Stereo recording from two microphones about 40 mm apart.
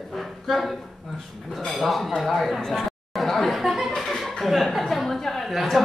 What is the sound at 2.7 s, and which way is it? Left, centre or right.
Chatter, centre.